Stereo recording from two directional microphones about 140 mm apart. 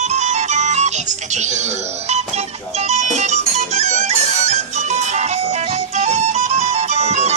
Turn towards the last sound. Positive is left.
turn(degrees=-50)  # may be behind; listen again after turning